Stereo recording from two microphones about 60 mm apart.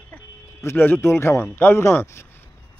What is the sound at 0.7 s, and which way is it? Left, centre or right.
A man's voice, left.